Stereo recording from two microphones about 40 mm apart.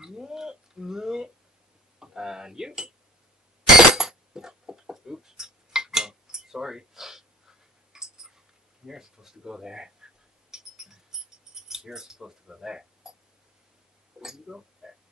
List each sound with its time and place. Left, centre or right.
0.0 s speech: centre
3.9 s a sound: centre
8.8 s speech: centre
10.5 s keys jangling: centre
14.2 s speech: centre